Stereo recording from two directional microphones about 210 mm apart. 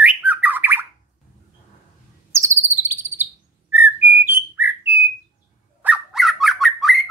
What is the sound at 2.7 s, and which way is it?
Cricket, 10° right (ahead or behind).